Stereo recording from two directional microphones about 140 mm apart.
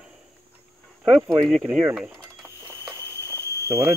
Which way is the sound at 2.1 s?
20° right (ahead or behind).